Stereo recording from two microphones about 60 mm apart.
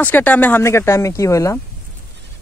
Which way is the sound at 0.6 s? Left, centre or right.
Left.